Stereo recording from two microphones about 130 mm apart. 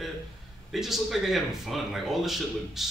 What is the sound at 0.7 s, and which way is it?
Speech, centre (ahead or behind).